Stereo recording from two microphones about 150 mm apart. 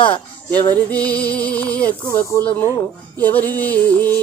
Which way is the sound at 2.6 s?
20° right (ahead or behind).